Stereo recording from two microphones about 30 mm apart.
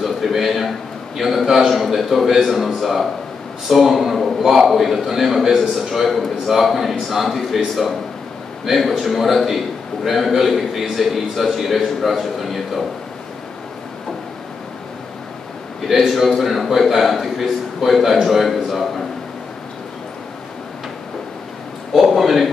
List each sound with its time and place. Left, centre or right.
0.0 s a man's voice: centre
1.4 s a man's voice: centre
1.7 s a man's voice: centre
16.1 s a man's voice: centre
18.4 s a sound: centre
21.9 s a sound: centre